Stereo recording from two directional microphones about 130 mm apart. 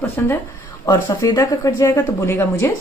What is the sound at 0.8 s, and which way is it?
Speech, 35° left (ahead or behind).